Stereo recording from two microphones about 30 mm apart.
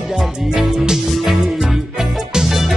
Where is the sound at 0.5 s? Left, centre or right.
Right.